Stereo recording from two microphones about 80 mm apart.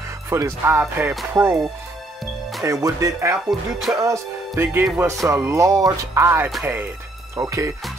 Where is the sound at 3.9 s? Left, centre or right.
Right.